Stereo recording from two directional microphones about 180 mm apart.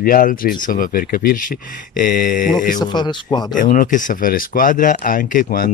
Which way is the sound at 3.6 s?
50° left (ahead or behind).